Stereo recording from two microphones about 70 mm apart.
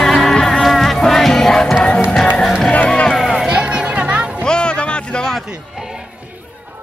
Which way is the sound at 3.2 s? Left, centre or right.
Centre.